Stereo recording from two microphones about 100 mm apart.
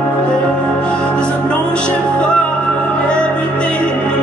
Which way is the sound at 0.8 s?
10° left (ahead or behind).